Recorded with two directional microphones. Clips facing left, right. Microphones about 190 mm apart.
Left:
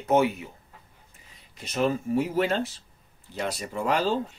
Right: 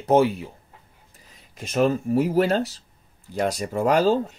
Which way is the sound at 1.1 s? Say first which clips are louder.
Right 3 dB; 45° right (ahead or behind).